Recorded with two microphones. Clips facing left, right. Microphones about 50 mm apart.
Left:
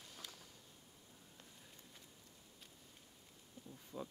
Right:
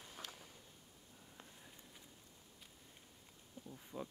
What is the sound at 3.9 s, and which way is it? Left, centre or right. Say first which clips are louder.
Speech: right 1 dB; centre.